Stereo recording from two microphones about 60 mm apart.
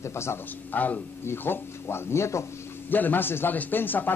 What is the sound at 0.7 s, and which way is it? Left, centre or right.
Speech, left.